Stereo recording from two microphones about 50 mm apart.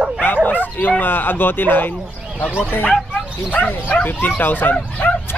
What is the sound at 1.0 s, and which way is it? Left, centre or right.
Speech, left.